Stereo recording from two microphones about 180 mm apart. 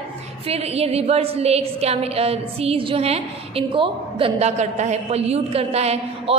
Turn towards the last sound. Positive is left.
turn(degrees=-35)  # may be behind; listen again after turning